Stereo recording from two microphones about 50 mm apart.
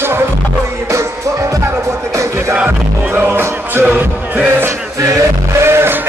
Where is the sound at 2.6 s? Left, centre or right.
Right.